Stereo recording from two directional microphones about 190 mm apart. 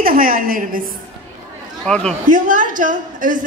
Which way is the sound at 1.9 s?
5° left (ahead or behind).